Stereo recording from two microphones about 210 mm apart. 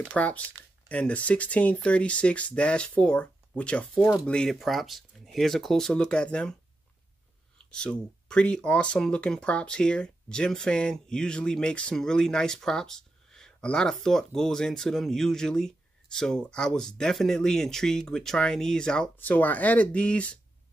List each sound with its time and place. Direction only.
0.0 s speech: 5° left (ahead or behind)
7.7 s speech: 5° left (ahead or behind)